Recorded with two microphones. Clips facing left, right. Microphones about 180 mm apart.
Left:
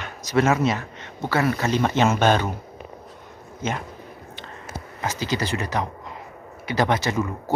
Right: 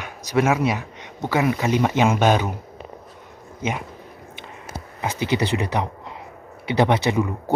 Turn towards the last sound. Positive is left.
turn(degrees=-15)  # may be behind; listen again after turning